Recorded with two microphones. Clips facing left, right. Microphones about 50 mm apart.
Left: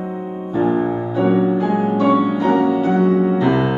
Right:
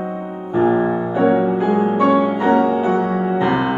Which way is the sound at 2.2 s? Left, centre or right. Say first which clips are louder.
Right 1 dB; right.